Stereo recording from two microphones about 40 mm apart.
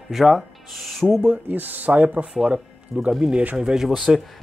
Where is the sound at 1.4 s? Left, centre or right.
Right.